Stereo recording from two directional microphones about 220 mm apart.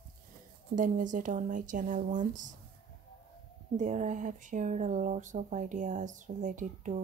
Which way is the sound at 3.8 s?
30° right (ahead or behind).